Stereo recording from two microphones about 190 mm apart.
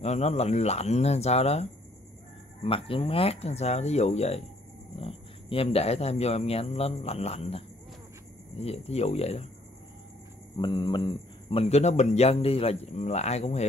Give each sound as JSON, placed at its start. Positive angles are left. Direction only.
{"t": 0.0, "sound": "speech", "side_deg": 35}
{"t": 10.6, "sound": "speech", "side_deg": 25}